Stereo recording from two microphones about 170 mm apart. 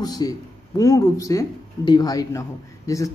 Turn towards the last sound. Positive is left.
turn(degrees=20)  # may be behind; listen again after turning